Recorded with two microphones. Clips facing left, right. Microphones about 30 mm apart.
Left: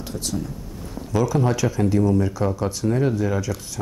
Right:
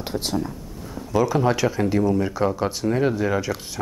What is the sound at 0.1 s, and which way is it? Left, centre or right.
Speech, right.